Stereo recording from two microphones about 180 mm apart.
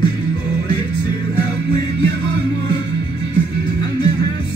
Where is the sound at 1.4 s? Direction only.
25° left (ahead or behind).